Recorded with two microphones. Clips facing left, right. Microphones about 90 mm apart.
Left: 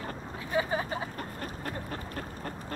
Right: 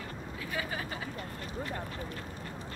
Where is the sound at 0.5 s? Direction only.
30° left (ahead or behind).